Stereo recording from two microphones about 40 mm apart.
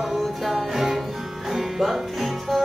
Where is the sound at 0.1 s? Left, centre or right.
Centre.